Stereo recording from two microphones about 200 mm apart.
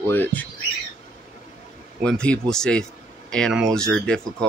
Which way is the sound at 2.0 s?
5° left (ahead or behind).